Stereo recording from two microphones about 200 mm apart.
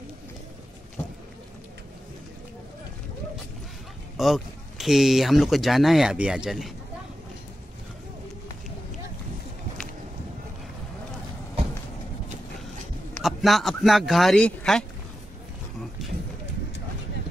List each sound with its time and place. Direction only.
4.2 s speech: centre (ahead or behind)
13.1 s a man's voice: centre (ahead or behind)
16.0 s a sound: centre (ahead or behind)